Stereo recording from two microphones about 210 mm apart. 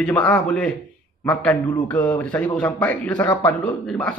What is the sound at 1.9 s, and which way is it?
Speech, 5° left (ahead or behind).